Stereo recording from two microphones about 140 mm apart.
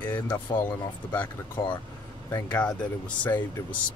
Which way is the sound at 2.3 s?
10° left (ahead or behind).